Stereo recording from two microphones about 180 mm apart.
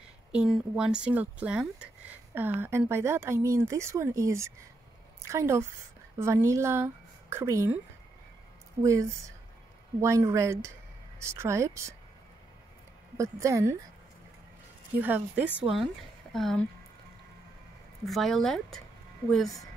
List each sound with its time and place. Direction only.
0.3 s speech: 5° right (ahead or behind)
8.8 s speech: 15° right (ahead or behind)
13.2 s speech: 15° right (ahead or behind)
15.0 s speech: 10° right (ahead or behind)
15.7 s speech: centre (ahead or behind)
18.0 s a woman's voice: centre (ahead or behind)